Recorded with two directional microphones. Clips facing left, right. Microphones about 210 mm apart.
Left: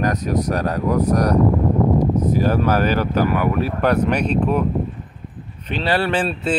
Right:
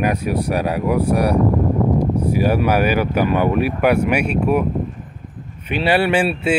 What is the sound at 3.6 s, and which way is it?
Speech, 10° right (ahead or behind).